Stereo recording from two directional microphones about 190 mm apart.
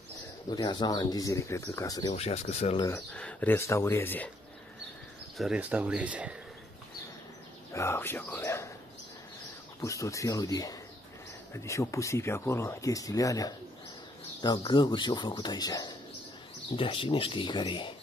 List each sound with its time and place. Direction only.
0.5 s speech: 20° left (ahead or behind)
2.1 s speech: 35° left (ahead or behind)
2.9 s speech: 10° left (ahead or behind)
5.4 s speech: 5° right (ahead or behind)
7.7 s speech: 15° left (ahead or behind)
9.8 s speech: 15° left (ahead or behind)
14.6 s speech: 25° left (ahead or behind)